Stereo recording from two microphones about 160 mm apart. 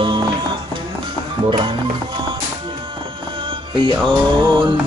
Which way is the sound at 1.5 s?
30° right (ahead or behind).